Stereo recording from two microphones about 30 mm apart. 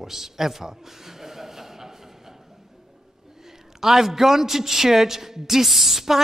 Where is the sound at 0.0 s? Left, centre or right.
Centre.